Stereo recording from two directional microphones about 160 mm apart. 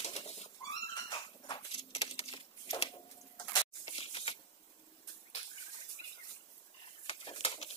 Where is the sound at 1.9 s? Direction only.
40° left (ahead or behind).